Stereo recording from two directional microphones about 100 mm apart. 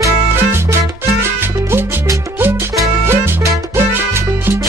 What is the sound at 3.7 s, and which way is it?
Salsa music, 25° right (ahead or behind).